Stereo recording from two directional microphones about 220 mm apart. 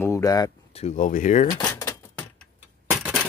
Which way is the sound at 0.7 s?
30° left (ahead or behind).